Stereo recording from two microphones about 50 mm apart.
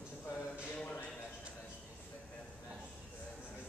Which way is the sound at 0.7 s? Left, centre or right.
Left.